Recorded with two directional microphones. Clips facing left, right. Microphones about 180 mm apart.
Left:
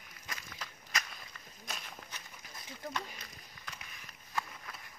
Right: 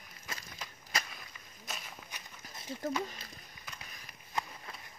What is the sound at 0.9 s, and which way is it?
Whip, 30° right (ahead or behind).